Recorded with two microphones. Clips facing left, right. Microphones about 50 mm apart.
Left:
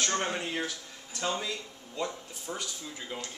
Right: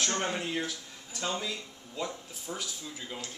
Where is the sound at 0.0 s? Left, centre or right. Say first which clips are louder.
Left 1 dB; centre.